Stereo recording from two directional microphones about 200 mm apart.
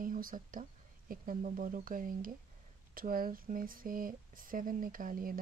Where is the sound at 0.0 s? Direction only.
45° right (ahead or behind).